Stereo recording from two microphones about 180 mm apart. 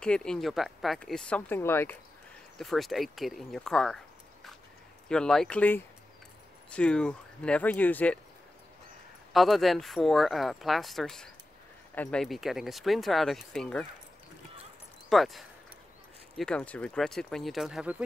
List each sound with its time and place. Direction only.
0.0 s speech: 5° left (ahead or behind)
2.6 s speech: centre (ahead or behind)
5.0 s speech: 5° left (ahead or behind)
9.3 s speech: centre (ahead or behind)
15.0 s speech: centre (ahead or behind)